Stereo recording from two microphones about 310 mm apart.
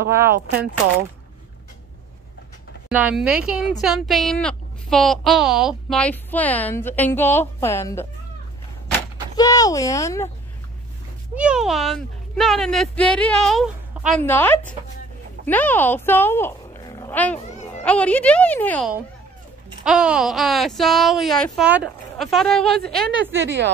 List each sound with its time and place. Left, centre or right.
0.1 s speech: centre
2.9 s speech: centre
9.4 s speech: centre
11.3 s speech: centre
23.3 s a woman's voice: right